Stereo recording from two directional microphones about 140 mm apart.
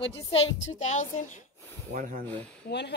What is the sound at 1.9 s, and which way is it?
Speech, 65° right (ahead or behind).